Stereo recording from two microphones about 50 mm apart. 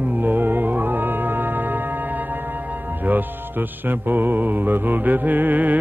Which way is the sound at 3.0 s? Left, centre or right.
Right.